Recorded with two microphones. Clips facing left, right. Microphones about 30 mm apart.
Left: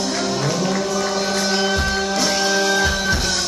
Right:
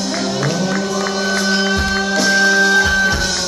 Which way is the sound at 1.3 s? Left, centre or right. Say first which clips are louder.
Right 4 dB; right.